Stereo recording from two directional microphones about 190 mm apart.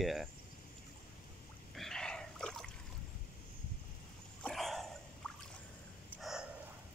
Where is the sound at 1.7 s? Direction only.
Centre (ahead or behind).